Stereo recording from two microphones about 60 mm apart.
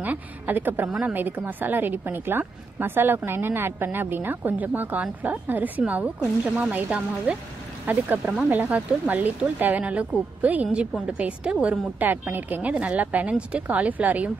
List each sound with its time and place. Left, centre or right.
0.0 s a woman's voice: right
7.8 s speech: right
12.1 s speech: right